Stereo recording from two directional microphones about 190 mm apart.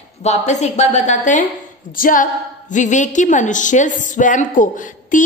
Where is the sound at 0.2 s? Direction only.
35° left (ahead or behind).